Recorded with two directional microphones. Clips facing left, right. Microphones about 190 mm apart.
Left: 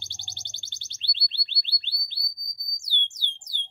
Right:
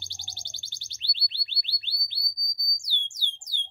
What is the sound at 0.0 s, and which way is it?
Music, 10° right (ahead or behind).